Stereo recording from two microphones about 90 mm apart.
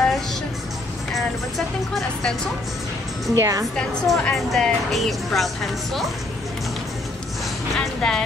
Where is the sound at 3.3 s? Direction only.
40° right (ahead or behind).